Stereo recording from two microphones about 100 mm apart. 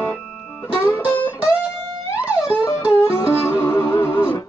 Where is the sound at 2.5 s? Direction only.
30° left (ahead or behind).